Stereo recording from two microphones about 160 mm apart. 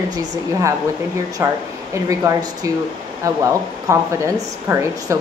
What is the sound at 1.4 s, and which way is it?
A woman's voice, 15° right (ahead or behind).